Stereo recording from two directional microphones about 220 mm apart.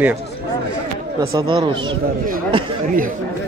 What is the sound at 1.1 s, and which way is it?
Speech, 20° right (ahead or behind).